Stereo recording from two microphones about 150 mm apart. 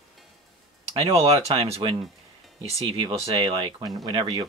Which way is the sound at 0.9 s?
40° right (ahead or behind).